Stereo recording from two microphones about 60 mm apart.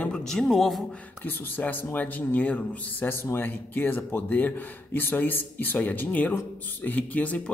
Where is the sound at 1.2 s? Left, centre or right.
Left.